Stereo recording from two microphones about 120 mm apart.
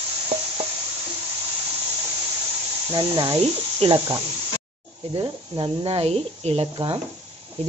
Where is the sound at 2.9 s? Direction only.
40° right (ahead or behind).